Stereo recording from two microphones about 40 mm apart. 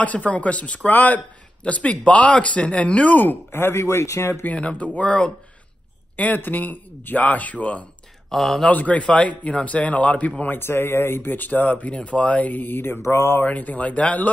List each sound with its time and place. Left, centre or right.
0.0 s speech: left
0.8 s speech: left
1.6 s speech: left
4.2 s speech: left
4.6 s speech: left
6.1 s speech: left
8.3 s speech: centre
8.6 s speech: left
10.6 s speech: left
11.3 s speech: left
13.5 s speech: left